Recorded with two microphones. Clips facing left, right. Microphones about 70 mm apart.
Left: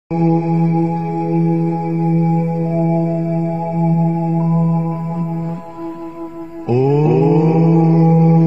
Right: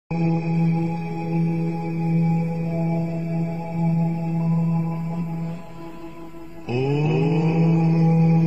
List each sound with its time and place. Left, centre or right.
0.1 s music: left
6.7 s mantra: left